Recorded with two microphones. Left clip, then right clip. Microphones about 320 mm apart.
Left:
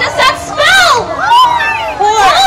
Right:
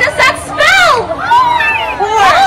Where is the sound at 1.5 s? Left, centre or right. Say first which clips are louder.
Right 1 dB; left.